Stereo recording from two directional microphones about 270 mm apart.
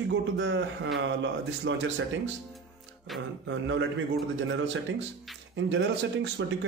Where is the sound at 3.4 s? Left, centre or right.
Right.